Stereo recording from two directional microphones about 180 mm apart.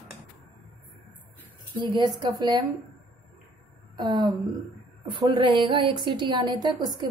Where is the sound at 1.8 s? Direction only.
25° right (ahead or behind).